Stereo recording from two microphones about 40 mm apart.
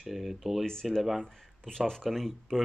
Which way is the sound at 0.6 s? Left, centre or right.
Centre.